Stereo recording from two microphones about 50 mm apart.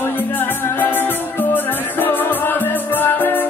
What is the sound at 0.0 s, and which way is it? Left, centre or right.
Music, left.